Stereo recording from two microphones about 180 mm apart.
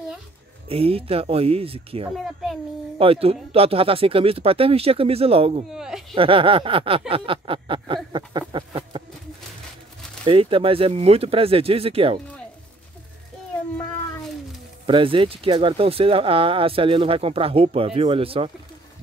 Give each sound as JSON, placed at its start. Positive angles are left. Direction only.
{"t": 0.7, "sound": "speech", "side_deg": -30}
{"t": 2.1, "sound": "a child's voice", "side_deg": 0}
{"t": 3.0, "sound": "speech", "side_deg": -30}
{"t": 5.7, "sound": "a child's voice", "side_deg": -5}
{"t": 6.1, "sound": "a sound", "side_deg": -30}
{"t": 10.2, "sound": "speech", "side_deg": -30}
{"t": 14.9, "sound": "speech", "side_deg": -30}